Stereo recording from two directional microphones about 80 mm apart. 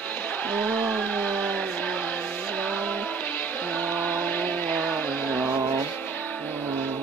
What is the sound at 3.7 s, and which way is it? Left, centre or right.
Chant, centre.